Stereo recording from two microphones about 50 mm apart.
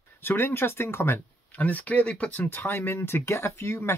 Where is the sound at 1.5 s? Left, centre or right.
Left.